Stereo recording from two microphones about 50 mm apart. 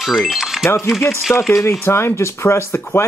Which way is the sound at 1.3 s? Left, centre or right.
Left.